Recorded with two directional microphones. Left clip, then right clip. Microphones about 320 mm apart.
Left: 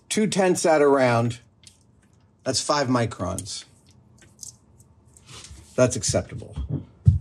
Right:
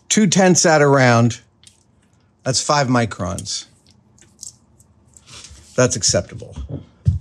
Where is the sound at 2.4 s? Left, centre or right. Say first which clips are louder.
Right 5 dB; right.